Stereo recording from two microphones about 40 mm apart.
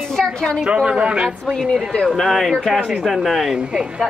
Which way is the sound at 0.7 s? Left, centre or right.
Right.